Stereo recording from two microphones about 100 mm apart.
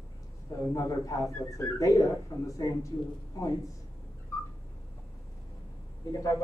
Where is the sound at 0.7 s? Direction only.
35° left (ahead or behind).